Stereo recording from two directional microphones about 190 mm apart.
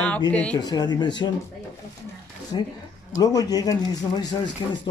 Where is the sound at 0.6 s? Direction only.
20° left (ahead or behind).